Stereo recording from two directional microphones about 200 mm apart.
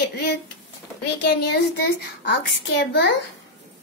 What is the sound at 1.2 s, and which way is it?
A child's voice, 55° left (ahead or behind).